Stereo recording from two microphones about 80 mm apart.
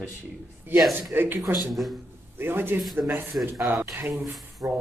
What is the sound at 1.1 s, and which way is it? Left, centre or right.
A man's voice, right.